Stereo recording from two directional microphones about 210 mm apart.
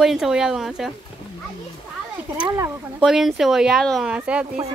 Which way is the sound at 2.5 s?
15° right (ahead or behind).